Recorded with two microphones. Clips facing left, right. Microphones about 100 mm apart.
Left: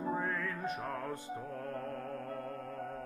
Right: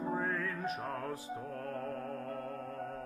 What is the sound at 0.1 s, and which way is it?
Music, centre (ahead or behind).